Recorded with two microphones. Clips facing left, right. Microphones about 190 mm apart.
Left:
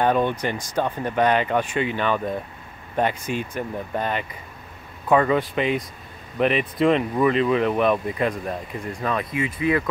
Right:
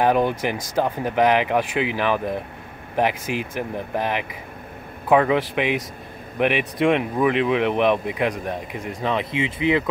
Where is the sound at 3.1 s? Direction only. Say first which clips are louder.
Right 1 dB; 90° right.